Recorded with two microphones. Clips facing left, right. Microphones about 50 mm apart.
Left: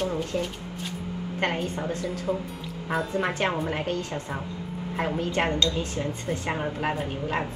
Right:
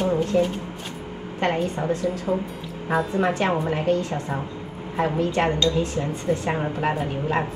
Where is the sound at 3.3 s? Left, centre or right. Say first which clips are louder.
Right 4 dB; right.